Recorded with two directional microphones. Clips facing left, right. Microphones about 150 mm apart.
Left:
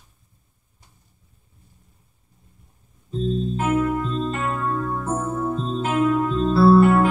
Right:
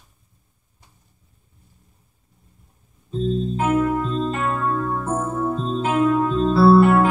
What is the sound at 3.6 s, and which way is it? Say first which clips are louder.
Music: right 2 dB; 35° right (ahead or behind).